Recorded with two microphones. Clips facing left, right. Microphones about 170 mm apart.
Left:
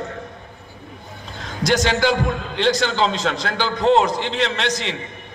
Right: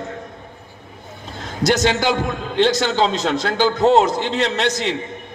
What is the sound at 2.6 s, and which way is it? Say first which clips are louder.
A man's voice: even; 40° right (ahead or behind).